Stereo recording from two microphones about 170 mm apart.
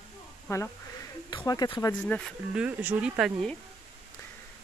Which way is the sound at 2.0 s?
5° left (ahead or behind).